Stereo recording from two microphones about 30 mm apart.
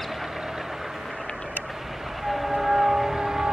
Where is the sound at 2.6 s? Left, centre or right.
Centre.